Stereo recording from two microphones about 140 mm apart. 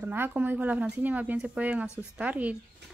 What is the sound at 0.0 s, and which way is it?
Speech, 15° right (ahead or behind).